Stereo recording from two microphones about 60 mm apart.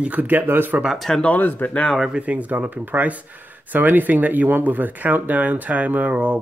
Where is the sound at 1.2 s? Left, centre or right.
Left.